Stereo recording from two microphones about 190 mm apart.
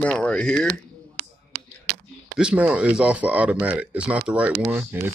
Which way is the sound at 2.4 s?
5° right (ahead or behind).